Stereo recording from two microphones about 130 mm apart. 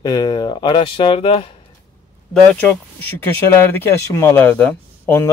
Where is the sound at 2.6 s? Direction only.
10° left (ahead or behind).